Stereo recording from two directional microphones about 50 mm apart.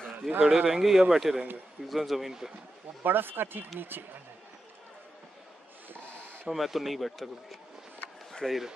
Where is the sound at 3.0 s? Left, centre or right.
Right.